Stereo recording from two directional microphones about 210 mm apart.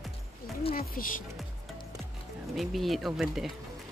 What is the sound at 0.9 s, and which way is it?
Speech, 40° left (ahead or behind).